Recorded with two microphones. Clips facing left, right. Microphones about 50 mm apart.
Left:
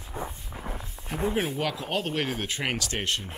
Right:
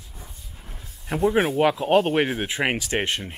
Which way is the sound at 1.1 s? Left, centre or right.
Right.